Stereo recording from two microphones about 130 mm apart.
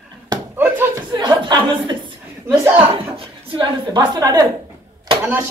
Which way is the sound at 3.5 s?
35° right (ahead or behind).